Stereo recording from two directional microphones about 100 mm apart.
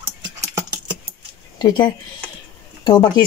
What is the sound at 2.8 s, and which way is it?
Speech, 45° left (ahead or behind).